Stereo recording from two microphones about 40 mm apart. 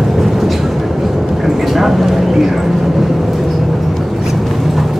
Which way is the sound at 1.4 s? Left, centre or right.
Centre.